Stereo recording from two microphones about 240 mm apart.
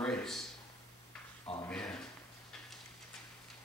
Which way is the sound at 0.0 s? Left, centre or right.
Centre.